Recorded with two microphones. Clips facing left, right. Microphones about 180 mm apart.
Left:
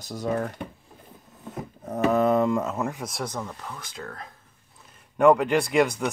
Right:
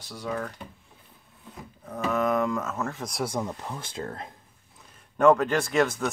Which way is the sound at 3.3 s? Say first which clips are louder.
Right 3 dB; 20° right (ahead or behind).